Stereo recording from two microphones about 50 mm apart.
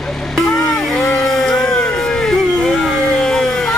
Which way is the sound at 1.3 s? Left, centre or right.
Centre.